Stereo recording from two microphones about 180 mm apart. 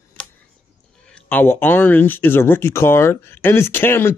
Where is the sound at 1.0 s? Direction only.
5° left (ahead or behind).